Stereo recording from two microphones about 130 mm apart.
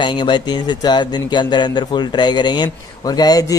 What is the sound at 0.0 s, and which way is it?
Speech, 35° left (ahead or behind).